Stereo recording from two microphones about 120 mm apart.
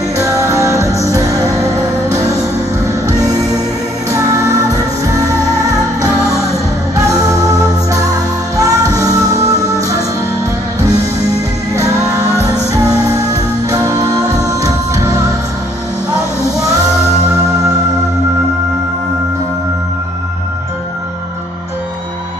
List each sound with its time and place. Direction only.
0.2 s music: 25° right (ahead or behind)
4.3 s music: 25° right (ahead or behind)
7.4 s music: 30° right (ahead or behind)
11.7 s music: 25° right (ahead or behind)